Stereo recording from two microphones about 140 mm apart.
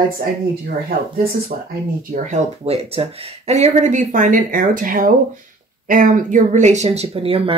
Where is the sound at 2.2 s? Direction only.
55° right (ahead or behind).